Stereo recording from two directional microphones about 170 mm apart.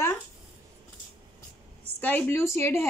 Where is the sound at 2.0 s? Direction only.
10° left (ahead or behind).